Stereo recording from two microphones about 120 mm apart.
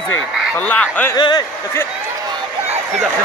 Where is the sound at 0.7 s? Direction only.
15° left (ahead or behind).